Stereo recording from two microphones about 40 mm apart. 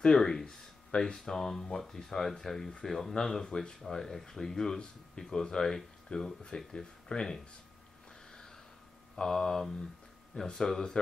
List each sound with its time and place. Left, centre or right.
0.1 s speech: centre
3.4 s speech: centre
6.1 s speech: left
8.3 s a sound: centre
9.1 s speech: centre